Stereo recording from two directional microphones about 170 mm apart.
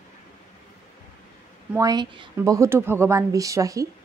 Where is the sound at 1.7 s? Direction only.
20° right (ahead or behind).